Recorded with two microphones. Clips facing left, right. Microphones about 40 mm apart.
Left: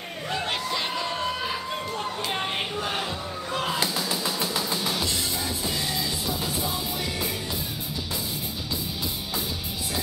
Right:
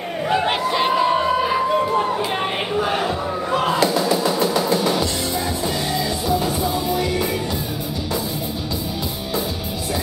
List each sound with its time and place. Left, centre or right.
0.3 s a sound: right
2.7 s music: centre
6.6 s music: centre